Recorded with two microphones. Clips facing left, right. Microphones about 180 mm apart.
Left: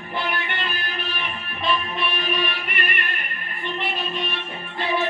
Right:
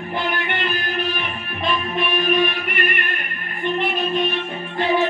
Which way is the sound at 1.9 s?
50° right (ahead or behind).